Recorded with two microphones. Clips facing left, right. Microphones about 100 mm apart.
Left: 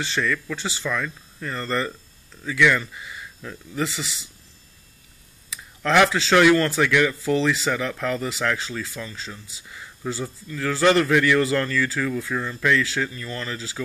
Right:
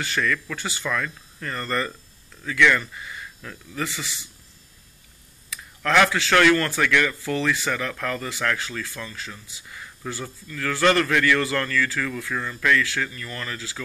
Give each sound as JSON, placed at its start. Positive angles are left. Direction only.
{"t": 0.2, "sound": "a man's voice", "side_deg": 10}
{"t": 5.9, "sound": "a man's voice", "side_deg": 20}